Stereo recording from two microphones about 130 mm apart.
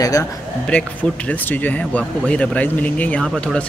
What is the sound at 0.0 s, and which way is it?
Speech, 25° left (ahead or behind).